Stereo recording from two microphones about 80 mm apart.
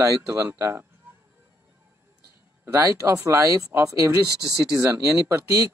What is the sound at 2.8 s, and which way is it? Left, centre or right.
Speech, right.